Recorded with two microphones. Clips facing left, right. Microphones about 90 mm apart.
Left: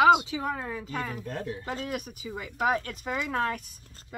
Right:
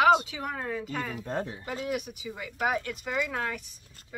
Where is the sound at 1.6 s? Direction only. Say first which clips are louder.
Right 1 dB; 40° left (ahead or behind).